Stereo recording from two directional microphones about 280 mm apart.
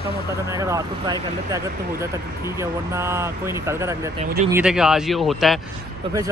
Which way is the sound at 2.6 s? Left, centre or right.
Centre.